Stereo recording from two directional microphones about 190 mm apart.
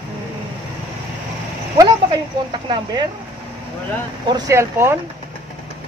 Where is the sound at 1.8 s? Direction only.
25° right (ahead or behind).